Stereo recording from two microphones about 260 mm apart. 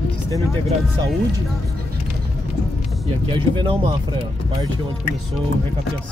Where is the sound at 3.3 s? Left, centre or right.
Centre.